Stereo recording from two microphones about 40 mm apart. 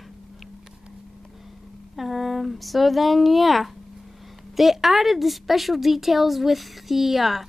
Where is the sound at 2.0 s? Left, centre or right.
Centre.